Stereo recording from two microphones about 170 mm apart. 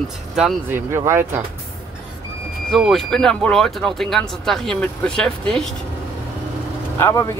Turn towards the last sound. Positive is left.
turn(degrees=15)  # may be behind; listen again after turning